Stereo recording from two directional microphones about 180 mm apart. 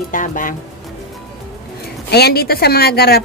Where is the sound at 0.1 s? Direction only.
45° left (ahead or behind).